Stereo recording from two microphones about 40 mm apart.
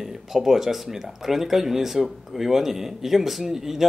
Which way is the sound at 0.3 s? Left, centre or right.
Centre.